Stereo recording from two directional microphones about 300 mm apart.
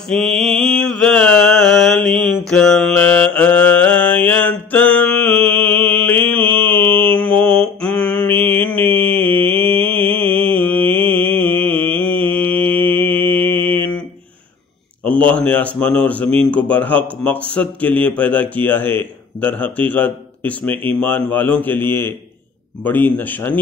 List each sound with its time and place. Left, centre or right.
0.1 s mantra: centre
8.8 s mantra: centre
9.1 s mantra: centre
9.6 s mantra: centre
9.8 s mantra: centre
15.0 s a sound: centre
15.8 s a man's voice: centre